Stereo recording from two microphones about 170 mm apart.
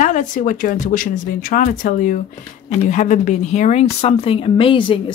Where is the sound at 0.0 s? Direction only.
50° left (ahead or behind).